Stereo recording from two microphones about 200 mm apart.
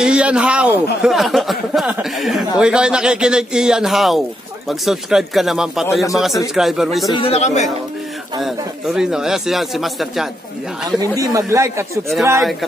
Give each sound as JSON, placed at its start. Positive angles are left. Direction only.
{"t": 0.0, "sound": "speech", "side_deg": -5}
{"t": 7.1, "sound": "a man's voice", "side_deg": 25}
{"t": 8.4, "sound": "speech", "side_deg": 0}
{"t": 11.0, "sound": "speech", "side_deg": -15}